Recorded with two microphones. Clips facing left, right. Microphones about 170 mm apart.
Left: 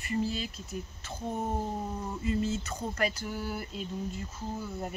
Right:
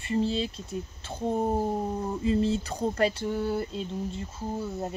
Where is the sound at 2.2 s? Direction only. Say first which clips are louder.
Right 5 dB; 30° right (ahead or behind).